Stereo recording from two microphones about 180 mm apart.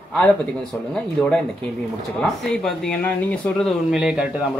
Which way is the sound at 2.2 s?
5° left (ahead or behind).